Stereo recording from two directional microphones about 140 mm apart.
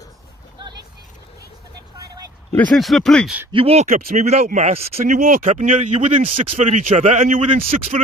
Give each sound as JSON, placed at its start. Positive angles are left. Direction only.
{"t": 2.7, "sound": "speech", "side_deg": 0}
{"t": 3.5, "sound": "speech", "side_deg": -45}
{"t": 3.9, "sound": "speech", "side_deg": -60}
{"t": 5.0, "sound": "speech", "side_deg": -80}